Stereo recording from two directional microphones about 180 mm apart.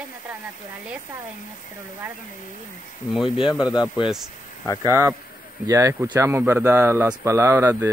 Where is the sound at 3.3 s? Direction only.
25° left (ahead or behind).